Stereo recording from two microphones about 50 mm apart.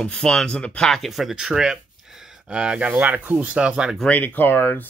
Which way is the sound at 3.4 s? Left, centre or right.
Right.